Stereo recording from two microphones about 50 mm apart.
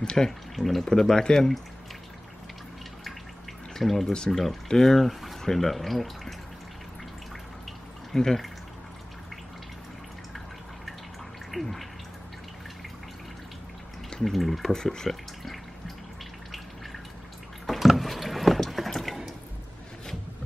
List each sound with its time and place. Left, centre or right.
0.0 s speech: centre
0.6 s speech: centre
3.7 s speech: centre
8.1 s speech: centre
11.5 s a sound: centre
14.1 s speech: centre
15.0 s water tap: centre
17.6 s water: centre